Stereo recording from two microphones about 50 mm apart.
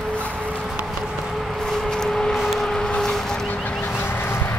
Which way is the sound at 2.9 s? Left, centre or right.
Centre.